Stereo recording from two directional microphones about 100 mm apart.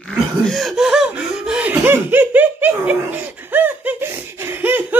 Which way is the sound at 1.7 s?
20° right (ahead or behind).